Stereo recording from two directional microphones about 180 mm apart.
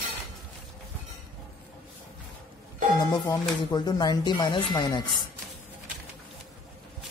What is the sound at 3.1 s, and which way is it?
Speech, 25° left (ahead or behind).